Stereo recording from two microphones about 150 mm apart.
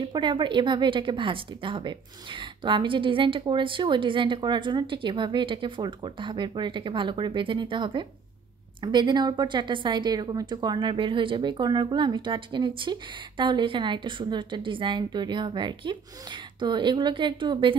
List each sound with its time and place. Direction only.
0.1 s a woman's voice: 30° right (ahead or behind)